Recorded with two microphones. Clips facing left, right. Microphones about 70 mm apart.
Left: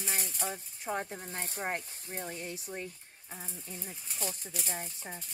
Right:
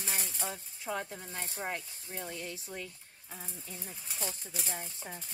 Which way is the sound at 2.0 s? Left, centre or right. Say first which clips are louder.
Left 1 dB; left.